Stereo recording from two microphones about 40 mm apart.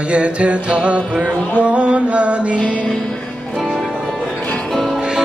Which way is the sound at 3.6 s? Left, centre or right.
Centre.